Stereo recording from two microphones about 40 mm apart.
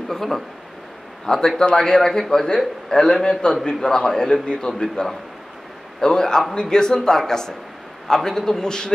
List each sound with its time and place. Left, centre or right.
0.1 s a man's voice: centre
5.9 s a man's voice: centre